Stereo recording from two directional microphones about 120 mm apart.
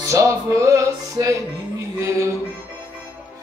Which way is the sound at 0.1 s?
25° right (ahead or behind).